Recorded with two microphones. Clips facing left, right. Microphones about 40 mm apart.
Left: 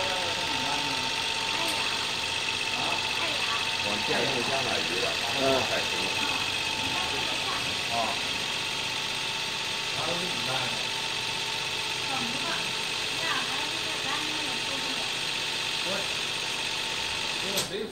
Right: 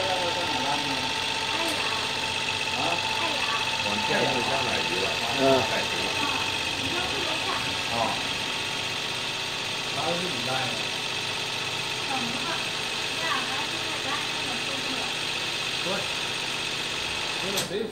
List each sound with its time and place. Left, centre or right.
3.9 s speech: centre